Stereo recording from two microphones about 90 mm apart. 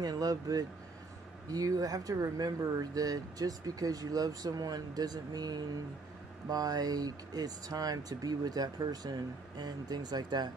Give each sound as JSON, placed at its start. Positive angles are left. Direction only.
{"t": 0.0, "sound": "speech", "side_deg": -45}